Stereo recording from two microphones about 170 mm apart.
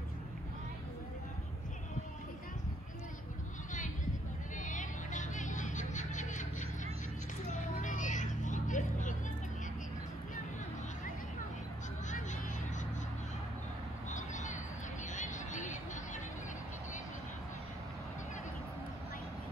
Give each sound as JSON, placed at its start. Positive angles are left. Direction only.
{"t": 4.6, "sound": "music", "side_deg": 50}
{"t": 7.5, "sound": "vehicle", "side_deg": 50}
{"t": 12.1, "sound": "vehicle", "side_deg": 45}
{"t": 14.0, "sound": "a sound", "side_deg": 45}
{"t": 15.1, "sound": "vehicle", "side_deg": 45}